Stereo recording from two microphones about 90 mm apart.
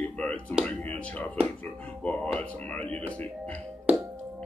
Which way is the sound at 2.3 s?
15° left (ahead or behind).